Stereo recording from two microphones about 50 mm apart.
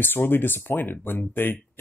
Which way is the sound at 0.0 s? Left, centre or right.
Left.